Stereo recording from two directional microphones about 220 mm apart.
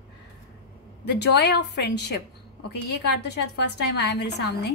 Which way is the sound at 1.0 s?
50° left (ahead or behind).